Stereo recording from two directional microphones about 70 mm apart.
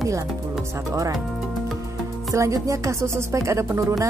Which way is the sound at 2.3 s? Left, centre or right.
Right.